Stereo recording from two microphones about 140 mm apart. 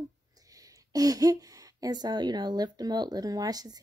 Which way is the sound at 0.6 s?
25° right (ahead or behind).